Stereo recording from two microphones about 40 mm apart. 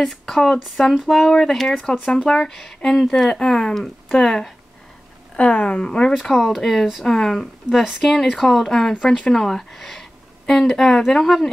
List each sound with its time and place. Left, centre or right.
0.0 s speech: centre
5.4 s speech: left
6.2 s speech: centre
9.0 s speech: left
9.3 s speech: centre